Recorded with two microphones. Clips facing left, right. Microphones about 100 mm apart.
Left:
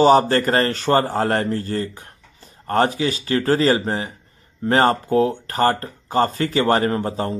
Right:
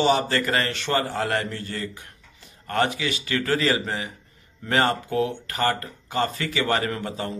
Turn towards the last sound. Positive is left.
turn(degrees=35)  # may be behind; listen again after turning